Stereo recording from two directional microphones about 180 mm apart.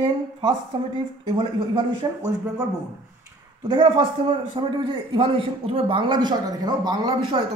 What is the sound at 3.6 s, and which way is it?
A man's voice, 25° right (ahead or behind).